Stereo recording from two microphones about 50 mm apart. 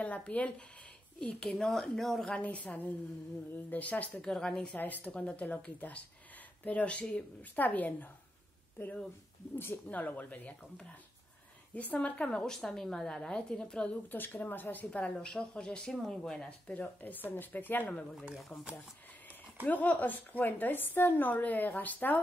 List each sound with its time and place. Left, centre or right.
0.0 s speech: left
1.5 s speech: centre
2.3 s speech: left
4.2 s a woman's voice: centre
4.7 s a woman's voice: left
5.1 s a woman's voice: left
8.8 s speech: left
9.8 s a woman's voice: left
11.7 s speech: left
12.5 s a woman's voice: centre
14.0 s a woman's voice: left
14.9 s a woman's voice: left; by 16.4 s centre
16.4 s a woman's voice: left
19.6 s a woman's voice: left